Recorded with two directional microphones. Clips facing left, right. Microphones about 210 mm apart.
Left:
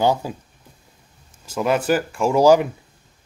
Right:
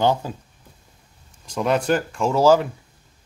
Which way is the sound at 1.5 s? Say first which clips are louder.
Left 1 dB; 5° left (ahead or behind).